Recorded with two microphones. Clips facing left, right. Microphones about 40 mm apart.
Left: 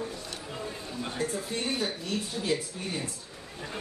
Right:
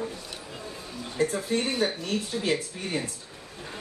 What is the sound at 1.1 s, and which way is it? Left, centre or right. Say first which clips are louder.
Speech: right 8 dB; right.